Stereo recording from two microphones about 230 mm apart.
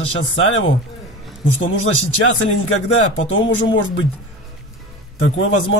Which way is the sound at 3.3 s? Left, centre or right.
Left.